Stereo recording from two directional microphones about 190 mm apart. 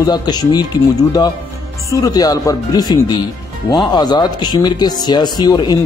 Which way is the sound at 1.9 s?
20° left (ahead or behind).